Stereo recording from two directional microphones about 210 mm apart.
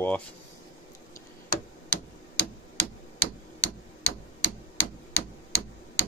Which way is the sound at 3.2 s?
10° left (ahead or behind).